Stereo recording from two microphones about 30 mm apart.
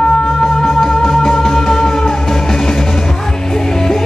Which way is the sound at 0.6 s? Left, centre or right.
Centre.